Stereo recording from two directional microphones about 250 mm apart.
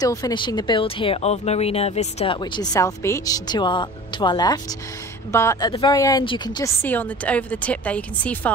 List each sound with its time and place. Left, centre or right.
0.0 s speech: centre